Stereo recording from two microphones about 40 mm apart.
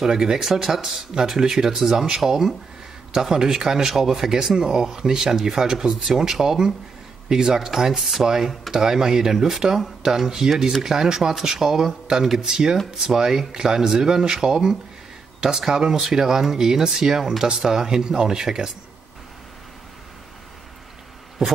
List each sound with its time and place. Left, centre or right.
0.0 s speech: centre